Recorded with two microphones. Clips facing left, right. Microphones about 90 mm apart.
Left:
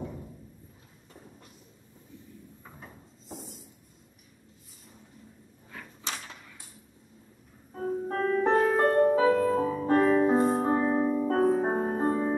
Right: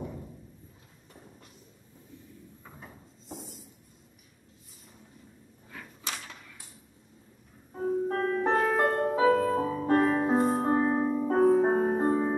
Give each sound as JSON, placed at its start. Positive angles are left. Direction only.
{"t": 2.6, "sound": "a sound", "side_deg": 0}
{"t": 5.7, "sound": "creak", "side_deg": 30}
{"t": 7.7, "sound": "music", "side_deg": -5}